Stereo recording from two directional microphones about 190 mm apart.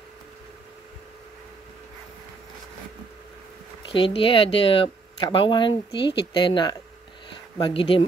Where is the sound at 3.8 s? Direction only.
25° left (ahead or behind).